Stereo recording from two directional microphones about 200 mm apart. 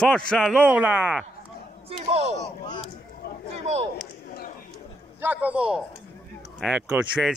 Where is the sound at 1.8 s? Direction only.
30° right (ahead or behind).